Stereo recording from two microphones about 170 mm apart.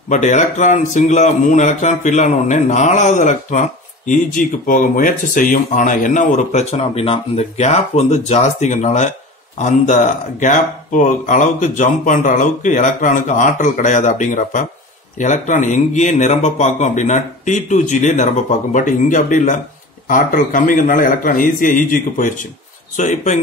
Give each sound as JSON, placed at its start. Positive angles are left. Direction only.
{"t": 0.1, "sound": "speech", "side_deg": 45}